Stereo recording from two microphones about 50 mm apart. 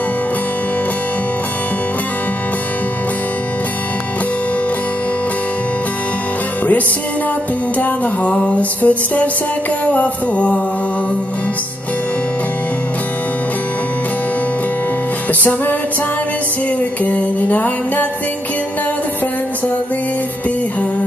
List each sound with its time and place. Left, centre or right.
7.8 s music: left
17.0 s music: left